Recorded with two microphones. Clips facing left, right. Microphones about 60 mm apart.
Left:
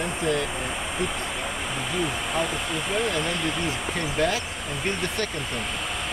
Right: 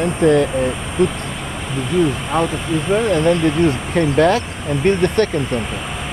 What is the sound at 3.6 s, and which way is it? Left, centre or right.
Speech, right.